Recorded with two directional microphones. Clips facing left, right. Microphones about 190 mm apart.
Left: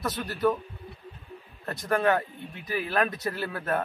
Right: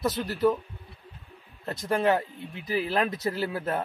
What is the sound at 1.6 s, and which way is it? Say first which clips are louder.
A man's voice: even; 25° right (ahead or behind).